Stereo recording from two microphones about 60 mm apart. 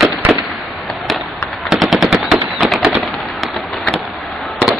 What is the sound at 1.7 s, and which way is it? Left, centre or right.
Machine gun, centre.